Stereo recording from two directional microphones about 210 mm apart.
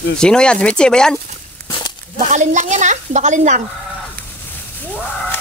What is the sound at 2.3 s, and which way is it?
A woman's voice, 35° right (ahead or behind).